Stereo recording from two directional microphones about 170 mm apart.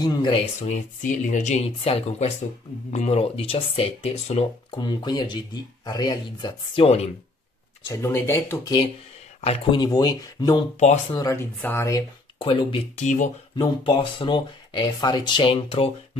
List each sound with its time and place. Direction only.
0.0 s speech: 25° left (ahead or behind)
0.6 s speech: 45° left (ahead or behind)
7.9 s speech: 15° left (ahead or behind)
9.4 s speech: 30° left (ahead or behind)
10.8 s speech: 40° left (ahead or behind)
11.1 s speech: 15° left (ahead or behind)
12.4 s speech: 30° left (ahead or behind)
13.0 s speech: 45° left (ahead or behind)
13.6 s speech: 30° left (ahead or behind)